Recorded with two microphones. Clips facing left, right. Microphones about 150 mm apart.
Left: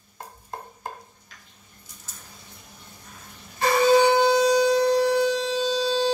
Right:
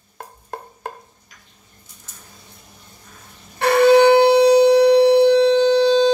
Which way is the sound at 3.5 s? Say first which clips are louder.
Right 6 dB; 65° right (ahead or behind).